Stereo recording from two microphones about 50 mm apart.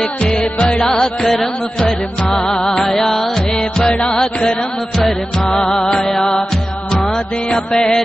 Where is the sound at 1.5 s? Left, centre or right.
Centre.